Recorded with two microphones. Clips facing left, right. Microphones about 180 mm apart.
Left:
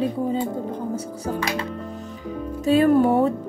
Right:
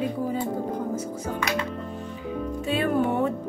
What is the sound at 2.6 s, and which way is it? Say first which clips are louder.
Music: left 8 dB; 40° left (ahead or behind).